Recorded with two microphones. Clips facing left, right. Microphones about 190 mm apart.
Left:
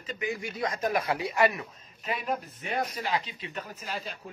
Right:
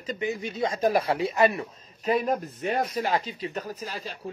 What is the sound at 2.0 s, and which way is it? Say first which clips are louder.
Speech: right 7 dB; 40° right (ahead or behind).